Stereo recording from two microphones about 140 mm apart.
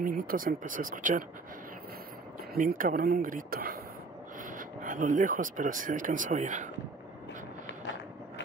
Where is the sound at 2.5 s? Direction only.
80° right.